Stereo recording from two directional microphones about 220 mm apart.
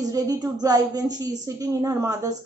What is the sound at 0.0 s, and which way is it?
A woman's voice, 15° right (ahead or behind).